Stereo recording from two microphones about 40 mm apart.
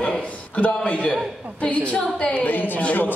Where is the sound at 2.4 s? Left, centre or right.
Left.